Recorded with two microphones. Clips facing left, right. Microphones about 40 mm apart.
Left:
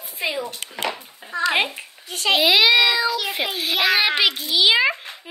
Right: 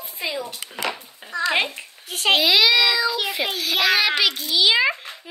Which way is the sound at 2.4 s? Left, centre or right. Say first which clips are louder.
Left 4 dB; centre.